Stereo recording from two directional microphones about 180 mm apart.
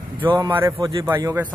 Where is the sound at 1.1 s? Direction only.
10° right (ahead or behind).